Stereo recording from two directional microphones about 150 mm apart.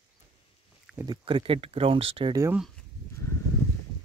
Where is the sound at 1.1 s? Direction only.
35° right (ahead or behind).